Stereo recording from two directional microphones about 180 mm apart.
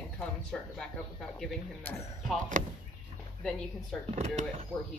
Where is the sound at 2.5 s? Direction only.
45° right (ahead or behind).